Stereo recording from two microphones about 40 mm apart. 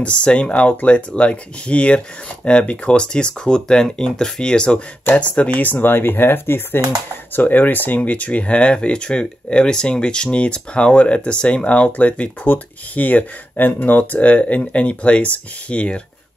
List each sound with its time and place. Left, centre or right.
0.0 s speech: left
5.6 s speech: left
7.3 s speech: left
14.1 s speech: left